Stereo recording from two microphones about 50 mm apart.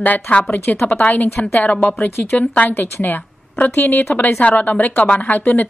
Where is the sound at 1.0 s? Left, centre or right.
Left.